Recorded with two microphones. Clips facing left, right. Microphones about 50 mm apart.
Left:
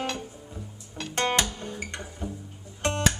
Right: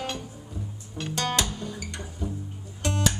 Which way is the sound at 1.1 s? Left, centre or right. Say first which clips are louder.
Left 2 dB; left.